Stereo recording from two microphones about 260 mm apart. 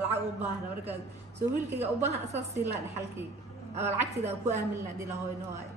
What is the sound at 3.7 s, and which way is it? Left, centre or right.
Speech, right.